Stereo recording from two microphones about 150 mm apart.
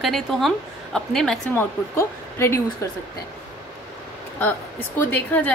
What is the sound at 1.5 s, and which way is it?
Speech, 15° left (ahead or behind).